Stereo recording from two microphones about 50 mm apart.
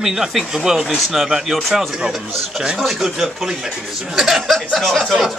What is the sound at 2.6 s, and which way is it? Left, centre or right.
Speech, centre.